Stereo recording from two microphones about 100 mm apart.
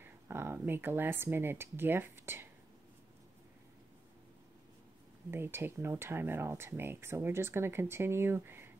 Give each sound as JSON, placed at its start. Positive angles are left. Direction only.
{"t": 0.0, "sound": "speech", "side_deg": -25}
{"t": 5.3, "sound": "speech", "side_deg": -20}